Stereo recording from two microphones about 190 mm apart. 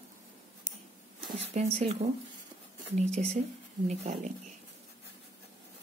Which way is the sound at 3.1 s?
35° right (ahead or behind).